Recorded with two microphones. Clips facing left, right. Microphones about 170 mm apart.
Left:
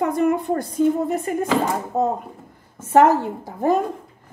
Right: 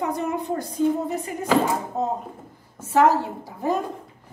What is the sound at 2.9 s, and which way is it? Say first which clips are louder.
Speech: left 4 dB; 50° left (ahead or behind).